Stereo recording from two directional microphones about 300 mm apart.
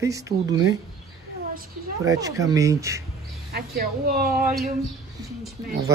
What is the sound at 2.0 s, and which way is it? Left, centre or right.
Speech, centre.